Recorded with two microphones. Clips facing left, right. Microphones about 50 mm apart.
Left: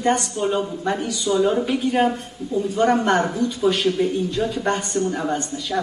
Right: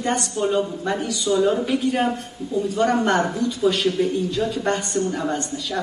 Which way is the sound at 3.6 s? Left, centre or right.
Centre.